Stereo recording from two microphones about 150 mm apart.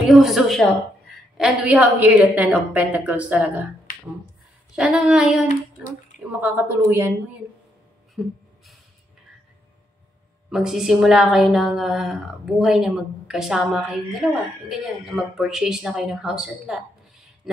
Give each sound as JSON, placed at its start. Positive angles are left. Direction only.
{"t": 0.0, "sound": "a woman's voice", "side_deg": 0}
{"t": 3.9, "sound": "finger snapping", "side_deg": 70}
{"t": 4.7, "sound": "a woman's voice", "side_deg": -5}
{"t": 8.2, "sound": "gasp", "side_deg": 0}
{"t": 10.5, "sound": "speech", "side_deg": -5}